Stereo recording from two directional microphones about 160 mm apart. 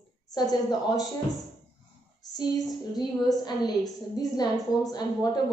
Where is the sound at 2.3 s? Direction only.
25° left (ahead or behind).